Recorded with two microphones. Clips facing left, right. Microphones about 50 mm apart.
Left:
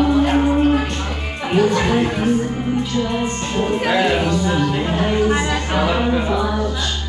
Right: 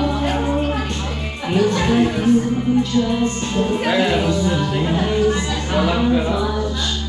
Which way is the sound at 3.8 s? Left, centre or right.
Centre.